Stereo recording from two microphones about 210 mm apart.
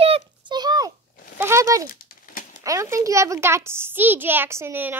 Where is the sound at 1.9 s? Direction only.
40° left (ahead or behind).